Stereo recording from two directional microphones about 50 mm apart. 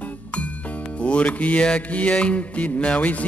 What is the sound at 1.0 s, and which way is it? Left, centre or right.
Music, left.